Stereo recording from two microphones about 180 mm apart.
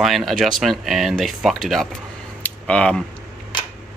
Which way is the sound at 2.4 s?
5° left (ahead or behind).